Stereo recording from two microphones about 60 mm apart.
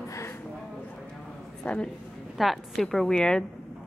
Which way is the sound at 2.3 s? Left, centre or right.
Centre.